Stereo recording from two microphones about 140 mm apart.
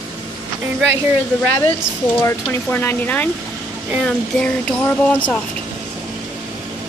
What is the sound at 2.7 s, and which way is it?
Speech, 15° left (ahead or behind).